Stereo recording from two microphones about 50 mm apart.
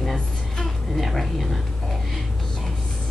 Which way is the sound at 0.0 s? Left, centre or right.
Centre.